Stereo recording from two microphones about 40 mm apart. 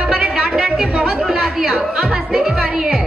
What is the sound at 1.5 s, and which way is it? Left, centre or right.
Music, centre.